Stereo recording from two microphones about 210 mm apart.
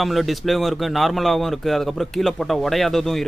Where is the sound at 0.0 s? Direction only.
Centre (ahead or behind).